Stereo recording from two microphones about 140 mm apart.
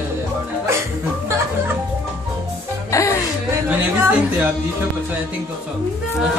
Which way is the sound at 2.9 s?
25° left (ahead or behind).